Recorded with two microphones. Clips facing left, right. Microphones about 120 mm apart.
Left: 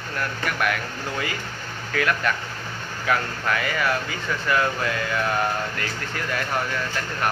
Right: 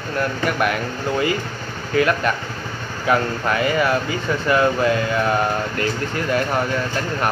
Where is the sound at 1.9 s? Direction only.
25° right (ahead or behind).